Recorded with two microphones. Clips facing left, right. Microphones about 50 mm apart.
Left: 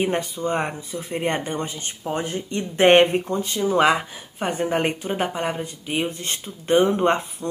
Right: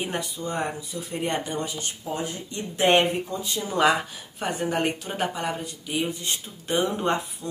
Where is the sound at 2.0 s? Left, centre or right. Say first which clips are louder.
Left 6 dB; left.